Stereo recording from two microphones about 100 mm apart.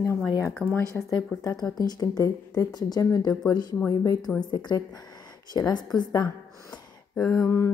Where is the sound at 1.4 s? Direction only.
40° left (ahead or behind).